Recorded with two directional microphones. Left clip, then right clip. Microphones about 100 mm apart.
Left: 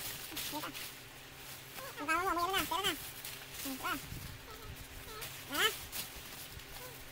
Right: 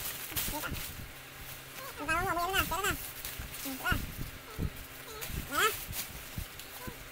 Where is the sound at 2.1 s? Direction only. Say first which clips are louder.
Right 2 dB; 10° right (ahead or behind).